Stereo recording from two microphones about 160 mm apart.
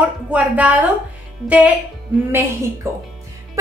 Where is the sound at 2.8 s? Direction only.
20° right (ahead or behind).